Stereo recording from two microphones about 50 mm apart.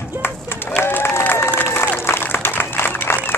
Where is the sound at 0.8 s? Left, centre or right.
Left.